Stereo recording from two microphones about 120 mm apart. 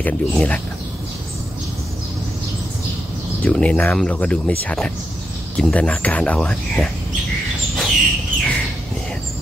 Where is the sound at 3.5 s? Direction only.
10° left (ahead or behind).